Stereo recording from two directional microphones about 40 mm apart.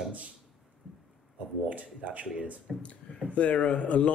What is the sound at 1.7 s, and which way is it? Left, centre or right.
Speech, right.